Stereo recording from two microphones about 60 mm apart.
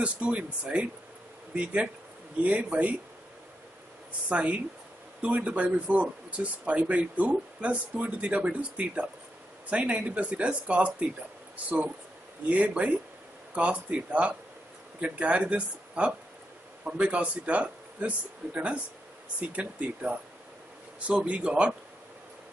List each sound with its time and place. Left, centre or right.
0.0 s speech: right
4.3 s speech: right